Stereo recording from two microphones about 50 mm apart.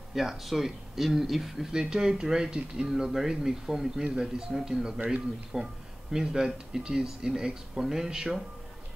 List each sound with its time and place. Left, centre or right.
0.1 s speech: centre